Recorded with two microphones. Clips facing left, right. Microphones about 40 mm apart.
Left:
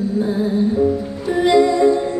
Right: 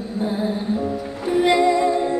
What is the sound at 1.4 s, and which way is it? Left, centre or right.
Music, right.